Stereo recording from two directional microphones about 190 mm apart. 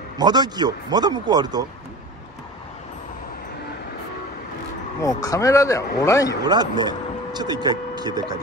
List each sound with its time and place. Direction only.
0.2 s a man's voice: 20° right (ahead or behind)
5.0 s a man's voice: 20° left (ahead or behind)
6.4 s speech: 20° right (ahead or behind)